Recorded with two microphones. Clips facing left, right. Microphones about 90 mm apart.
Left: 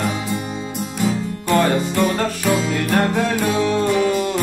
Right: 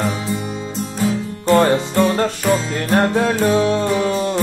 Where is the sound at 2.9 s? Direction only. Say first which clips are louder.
Right 4 dB; 30° right (ahead or behind).